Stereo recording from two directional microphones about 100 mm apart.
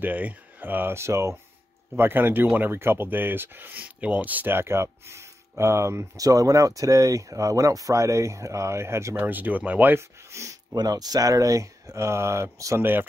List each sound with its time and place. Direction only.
0.0 s speech: 15° right (ahead or behind)